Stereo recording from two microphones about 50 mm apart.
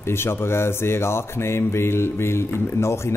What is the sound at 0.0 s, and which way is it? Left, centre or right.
Speech, left.